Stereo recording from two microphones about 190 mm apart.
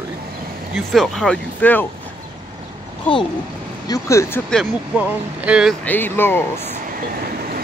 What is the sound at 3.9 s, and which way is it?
Speech, 15° left (ahead or behind).